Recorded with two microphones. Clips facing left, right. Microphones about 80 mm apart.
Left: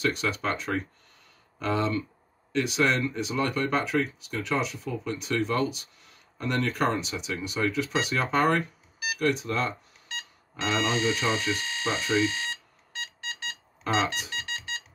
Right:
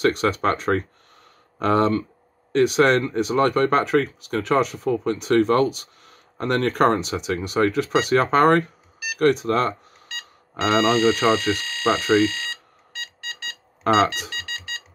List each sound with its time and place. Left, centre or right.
0.0 s speech: right
13.8 s speech: right